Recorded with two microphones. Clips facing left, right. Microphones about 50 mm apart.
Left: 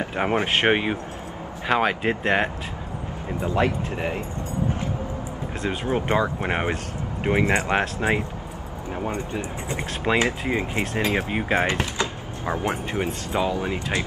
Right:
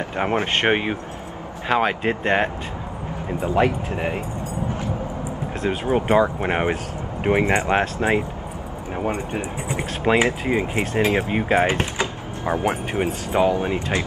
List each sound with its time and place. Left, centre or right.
0.1 s speech: centre
3.4 s speech: centre
5.6 s speech: centre
7.2 s speech: centre
7.7 s speech: centre
8.9 s speech: right
9.8 s speech: centre
11.8 s power windows: right
12.6 s speech: right